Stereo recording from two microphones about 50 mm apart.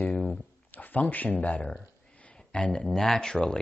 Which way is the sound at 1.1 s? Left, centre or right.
Left.